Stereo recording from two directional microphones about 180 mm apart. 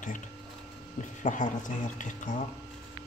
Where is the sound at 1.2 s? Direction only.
45° left (ahead or behind).